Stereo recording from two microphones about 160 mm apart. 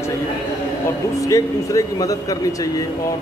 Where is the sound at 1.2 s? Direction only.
20° left (ahead or behind).